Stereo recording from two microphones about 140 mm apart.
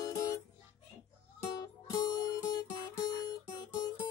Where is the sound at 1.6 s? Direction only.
30° left (ahead or behind).